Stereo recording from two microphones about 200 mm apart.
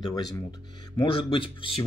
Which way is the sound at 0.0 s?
20° left (ahead or behind).